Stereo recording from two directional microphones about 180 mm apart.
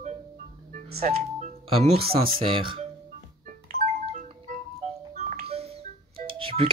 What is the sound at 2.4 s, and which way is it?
Speech, 30° right (ahead or behind).